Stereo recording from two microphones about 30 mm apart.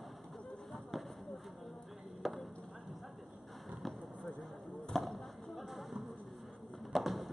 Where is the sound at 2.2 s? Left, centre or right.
Centre.